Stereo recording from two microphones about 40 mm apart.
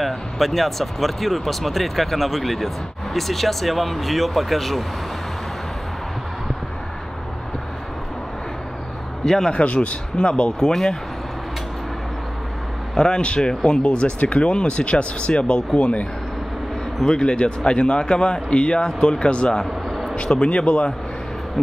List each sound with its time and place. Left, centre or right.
0.0 s speech: centre
9.2 s a man's voice: centre
9.5 s speech: left
10.7 s speech: centre
12.9 s speech: centre
13.7 s speech: left
17.0 s speech: centre
19.9 s a sound: centre
20.2 s speech: left